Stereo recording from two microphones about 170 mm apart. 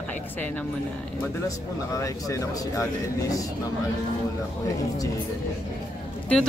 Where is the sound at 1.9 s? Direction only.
20° left (ahead or behind).